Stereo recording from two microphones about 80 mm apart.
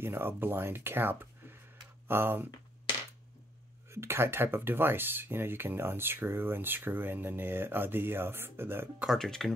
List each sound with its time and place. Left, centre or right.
0.0 s speech: right
3.9 s speech: right
9.1 s speech: centre